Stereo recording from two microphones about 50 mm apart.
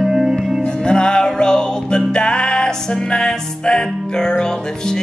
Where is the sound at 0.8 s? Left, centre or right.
Centre.